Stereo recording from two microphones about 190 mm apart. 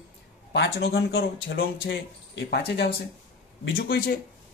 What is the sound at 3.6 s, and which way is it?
Speech, 75° left (ahead or behind).